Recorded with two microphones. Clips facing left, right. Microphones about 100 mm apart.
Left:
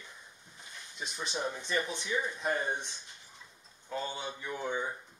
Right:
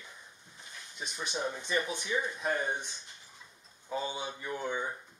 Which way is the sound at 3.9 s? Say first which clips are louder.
Right 2 dB; 15° right (ahead or behind).